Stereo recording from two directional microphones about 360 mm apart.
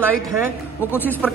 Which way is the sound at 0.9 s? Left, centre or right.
Centre.